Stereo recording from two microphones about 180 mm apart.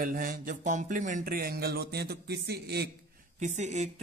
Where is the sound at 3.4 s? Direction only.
40° right (ahead or behind).